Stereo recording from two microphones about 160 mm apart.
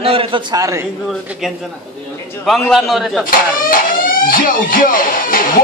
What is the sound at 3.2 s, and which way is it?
Speech, 60° left (ahead or behind).